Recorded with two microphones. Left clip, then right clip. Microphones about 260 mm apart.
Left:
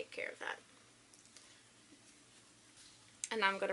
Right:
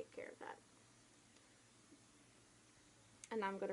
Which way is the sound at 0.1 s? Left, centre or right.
Centre.